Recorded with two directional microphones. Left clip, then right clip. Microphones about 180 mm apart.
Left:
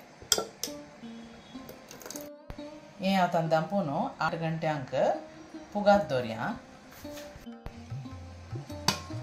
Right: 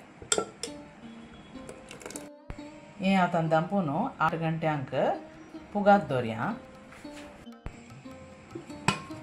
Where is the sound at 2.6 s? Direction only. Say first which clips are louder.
Even; centre (ahead or behind).